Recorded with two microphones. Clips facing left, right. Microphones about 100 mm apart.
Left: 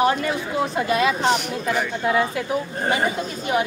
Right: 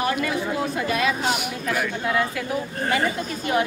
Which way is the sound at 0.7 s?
30° left (ahead or behind).